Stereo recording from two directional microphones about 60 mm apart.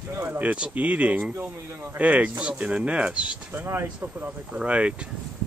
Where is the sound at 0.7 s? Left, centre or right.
Right.